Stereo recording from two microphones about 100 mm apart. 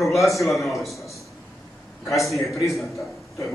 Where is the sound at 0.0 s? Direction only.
Centre (ahead or behind).